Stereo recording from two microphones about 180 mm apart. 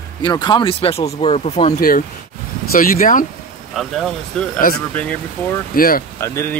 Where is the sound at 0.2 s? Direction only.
25° left (ahead or behind).